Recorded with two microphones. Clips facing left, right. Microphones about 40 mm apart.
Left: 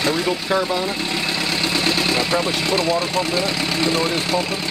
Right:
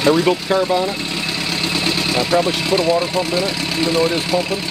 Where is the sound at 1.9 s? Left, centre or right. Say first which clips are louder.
Right 3 dB; centre.